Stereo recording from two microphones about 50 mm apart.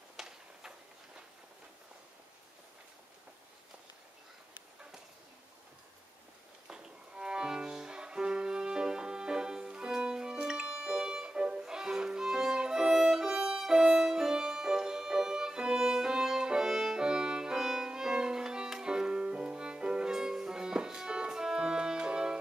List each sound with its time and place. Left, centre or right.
0.2 s a sound: centre
6.7 s music: centre
12.9 s violin: centre